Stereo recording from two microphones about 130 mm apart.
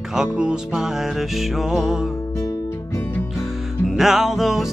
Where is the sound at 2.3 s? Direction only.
25° left (ahead or behind).